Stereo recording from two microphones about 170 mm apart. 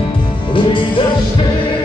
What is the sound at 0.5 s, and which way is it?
Music, 30° left (ahead or behind).